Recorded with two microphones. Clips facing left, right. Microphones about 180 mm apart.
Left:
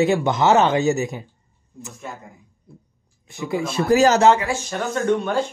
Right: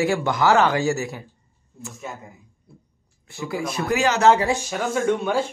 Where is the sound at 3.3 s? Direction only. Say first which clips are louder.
Left 3 dB; 20° left (ahead or behind); by 4.2 s 40° left (ahead or behind).